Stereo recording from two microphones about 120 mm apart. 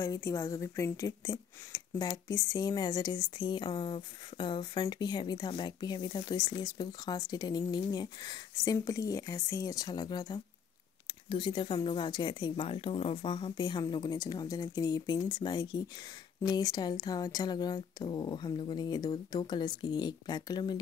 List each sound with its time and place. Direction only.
0.0 s a woman's voice: 25° left (ahead or behind)